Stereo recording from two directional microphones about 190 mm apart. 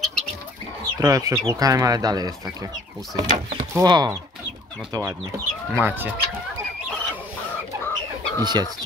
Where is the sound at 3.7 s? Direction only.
20° right (ahead or behind).